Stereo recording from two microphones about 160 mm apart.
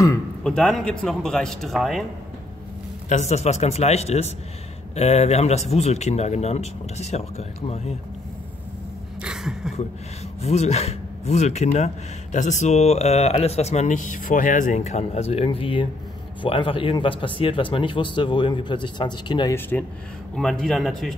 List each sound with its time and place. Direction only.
0.4 s a man's voice: 5° left (ahead or behind)
3.1 s speech: 45° left (ahead or behind)
9.2 s a sound: 5° right (ahead or behind)
10.4 s speech: 40° left (ahead or behind)
19.7 s a man's voice: 10° left (ahead or behind)